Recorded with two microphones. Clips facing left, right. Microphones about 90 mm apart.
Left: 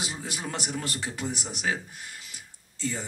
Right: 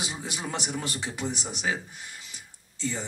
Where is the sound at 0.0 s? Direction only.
10° right (ahead or behind).